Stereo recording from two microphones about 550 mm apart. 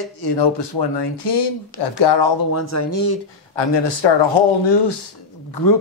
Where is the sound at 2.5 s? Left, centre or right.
Left.